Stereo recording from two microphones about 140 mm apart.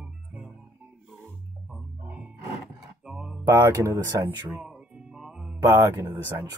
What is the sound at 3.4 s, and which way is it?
Speech, 20° right (ahead or behind).